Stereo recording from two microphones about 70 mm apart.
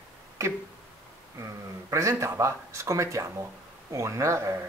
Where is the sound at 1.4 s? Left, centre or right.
Right.